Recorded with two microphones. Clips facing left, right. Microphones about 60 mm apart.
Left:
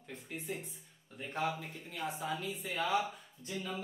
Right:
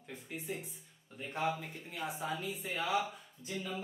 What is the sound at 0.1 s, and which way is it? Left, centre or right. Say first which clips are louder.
Speech: even; centre.